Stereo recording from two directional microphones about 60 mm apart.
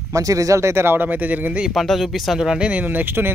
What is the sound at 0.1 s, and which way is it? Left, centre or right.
Speech, right.